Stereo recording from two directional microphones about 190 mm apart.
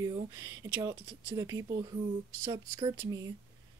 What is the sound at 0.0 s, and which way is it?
Speech, 20° right (ahead or behind).